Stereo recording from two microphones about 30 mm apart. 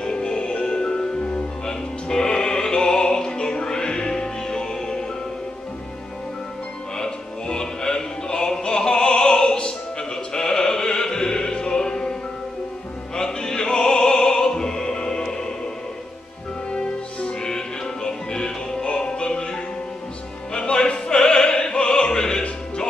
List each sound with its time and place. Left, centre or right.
0.0 s music: left
7.0 s music: left
16.7 s music: left
18.9 s music: left
20.6 s opera: left